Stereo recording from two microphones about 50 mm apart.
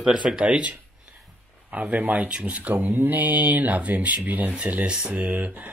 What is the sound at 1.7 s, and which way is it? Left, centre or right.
Speech, right.